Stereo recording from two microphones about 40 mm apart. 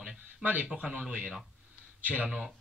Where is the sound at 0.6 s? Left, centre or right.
Right.